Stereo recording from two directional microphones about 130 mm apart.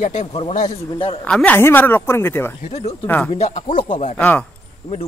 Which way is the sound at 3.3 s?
60° left (ahead or behind).